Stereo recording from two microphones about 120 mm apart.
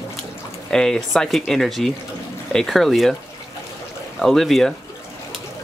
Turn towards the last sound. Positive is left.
turn(degrees=0)  # may be behind; listen again after turning